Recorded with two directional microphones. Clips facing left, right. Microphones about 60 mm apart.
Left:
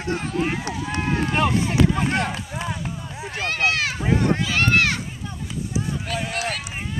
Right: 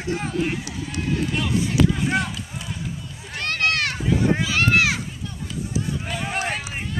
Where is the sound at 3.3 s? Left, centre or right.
Centre.